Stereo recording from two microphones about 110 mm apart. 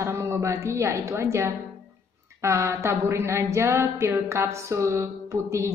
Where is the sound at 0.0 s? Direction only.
25° right (ahead or behind).